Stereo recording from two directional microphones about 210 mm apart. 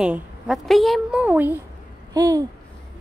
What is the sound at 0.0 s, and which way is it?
A woman's voice, 5° right (ahead or behind).